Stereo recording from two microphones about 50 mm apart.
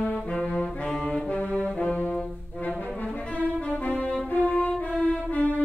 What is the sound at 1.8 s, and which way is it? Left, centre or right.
Brass instrument, left.